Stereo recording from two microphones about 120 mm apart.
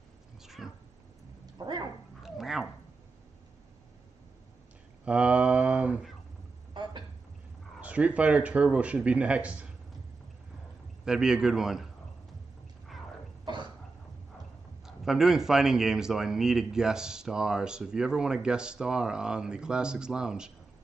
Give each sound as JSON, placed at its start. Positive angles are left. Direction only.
{"t": 0.4, "sound": "cat", "side_deg": 0}
{"t": 1.4, "sound": "a sound", "side_deg": -35}
{"t": 2.2, "sound": "dog", "side_deg": -5}
{"t": 5.0, "sound": "mantra", "side_deg": -10}
{"t": 6.7, "sound": "a sound", "side_deg": -40}
{"t": 7.8, "sound": "speech", "side_deg": -10}
{"t": 11.1, "sound": "speech", "side_deg": -5}
{"t": 12.9, "sound": "wild animals", "side_deg": 0}
{"t": 14.9, "sound": "speech", "side_deg": -5}